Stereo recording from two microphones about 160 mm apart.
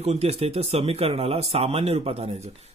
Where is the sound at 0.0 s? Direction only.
40° right (ahead or behind).